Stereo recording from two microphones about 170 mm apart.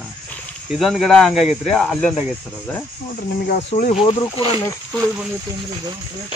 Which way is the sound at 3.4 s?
55° left (ahead or behind).